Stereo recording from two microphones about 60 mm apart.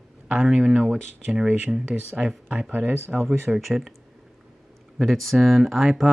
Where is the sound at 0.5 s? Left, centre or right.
Centre.